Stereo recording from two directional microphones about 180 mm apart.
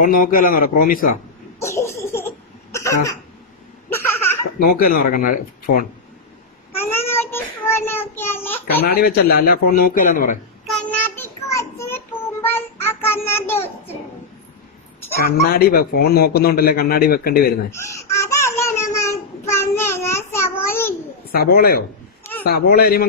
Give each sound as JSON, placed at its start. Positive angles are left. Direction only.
{"t": 0.0, "sound": "speech", "side_deg": 50}
{"t": 1.6, "sound": "laughter", "side_deg": 15}
{"t": 2.7, "sound": "cough", "side_deg": 15}
{"t": 3.9, "sound": "laughter", "side_deg": 10}
{"t": 4.6, "sound": "speech", "side_deg": 55}
{"t": 6.7, "sound": "child singing", "side_deg": 10}
{"t": 8.2, "sound": "a sound", "side_deg": 10}
{"t": 8.8, "sound": "a man's voice", "side_deg": 60}
{"t": 10.7, "sound": "child singing", "side_deg": 10}
{"t": 15.2, "sound": "a man's voice", "side_deg": 55}
{"t": 17.6, "sound": "a sound", "side_deg": 15}
{"t": 21.3, "sound": "a man's voice", "side_deg": 55}